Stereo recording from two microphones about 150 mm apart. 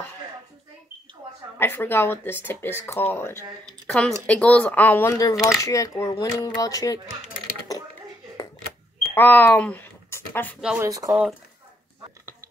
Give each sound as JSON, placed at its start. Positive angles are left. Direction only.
{"t": 1.6, "sound": "speech", "side_deg": 15}
{"t": 3.6, "sound": "speech", "side_deg": 5}
{"t": 9.1, "sound": "a sound", "side_deg": 15}
{"t": 10.8, "sound": "speech", "side_deg": -20}